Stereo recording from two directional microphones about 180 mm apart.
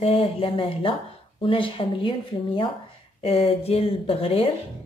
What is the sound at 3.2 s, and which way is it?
A woman's voice, 35° left (ahead or behind).